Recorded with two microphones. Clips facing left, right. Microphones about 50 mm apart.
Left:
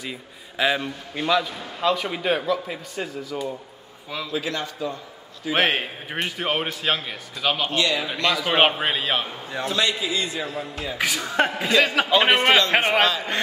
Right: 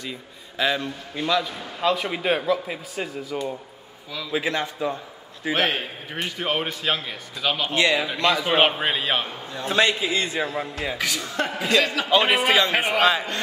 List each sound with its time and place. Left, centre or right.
0.0 s a man's voice: centre
4.3 s a man's voice: right
5.5 s speech: left
6.2 s a man's voice: centre
7.7 s a man's voice: right
8.0 s a man's voice: centre
8.5 s a man's voice: centre
9.7 s a man's voice: right
11.0 s speech: left
11.5 s speech: centre
12.1 s a man's voice: centre